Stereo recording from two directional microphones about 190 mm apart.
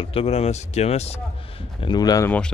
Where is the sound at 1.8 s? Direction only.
20° left (ahead or behind).